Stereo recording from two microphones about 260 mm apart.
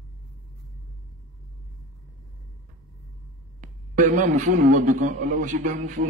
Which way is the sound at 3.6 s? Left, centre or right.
Right.